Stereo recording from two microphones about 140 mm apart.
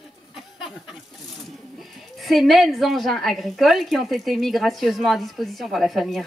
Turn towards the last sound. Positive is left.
turn(degrees=0)  # may be behind; listen again after turning